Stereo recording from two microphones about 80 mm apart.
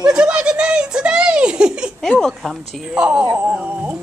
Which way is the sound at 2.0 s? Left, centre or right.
Centre.